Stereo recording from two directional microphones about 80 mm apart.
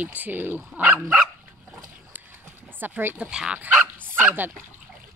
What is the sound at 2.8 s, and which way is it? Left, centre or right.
Speech, right.